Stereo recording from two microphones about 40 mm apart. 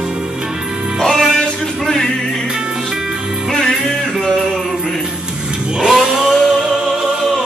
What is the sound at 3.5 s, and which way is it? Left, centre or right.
Music, centre.